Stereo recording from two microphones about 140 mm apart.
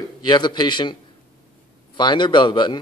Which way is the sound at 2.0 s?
35° left (ahead or behind).